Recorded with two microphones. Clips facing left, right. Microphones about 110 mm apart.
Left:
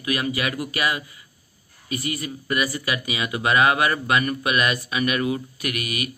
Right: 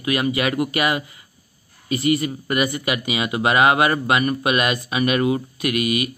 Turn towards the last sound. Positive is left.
turn(degrees=-25)  # may be behind; listen again after turning